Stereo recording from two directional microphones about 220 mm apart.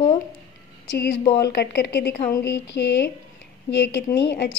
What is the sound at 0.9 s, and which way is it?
A woman's voice, 55° left (ahead or behind).